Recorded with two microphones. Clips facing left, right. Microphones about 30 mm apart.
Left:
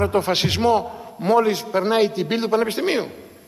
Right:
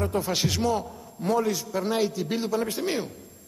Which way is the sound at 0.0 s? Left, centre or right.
Left.